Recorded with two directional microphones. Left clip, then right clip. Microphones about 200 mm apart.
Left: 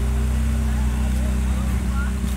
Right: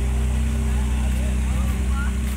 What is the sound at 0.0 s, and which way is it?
Vehicle, 40° left (ahead or behind).